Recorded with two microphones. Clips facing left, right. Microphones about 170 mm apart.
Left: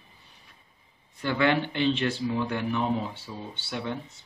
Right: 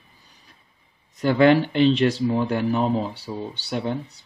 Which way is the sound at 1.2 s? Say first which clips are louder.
Right 8 dB; 40° right (ahead or behind).